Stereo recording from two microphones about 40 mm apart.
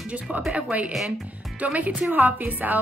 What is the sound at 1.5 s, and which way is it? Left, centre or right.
Speech, right.